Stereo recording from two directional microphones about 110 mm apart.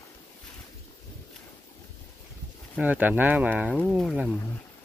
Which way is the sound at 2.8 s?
15° right (ahead or behind).